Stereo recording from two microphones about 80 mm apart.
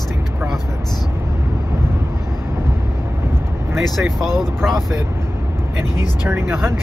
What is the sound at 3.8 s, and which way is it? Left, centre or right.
Speech, centre.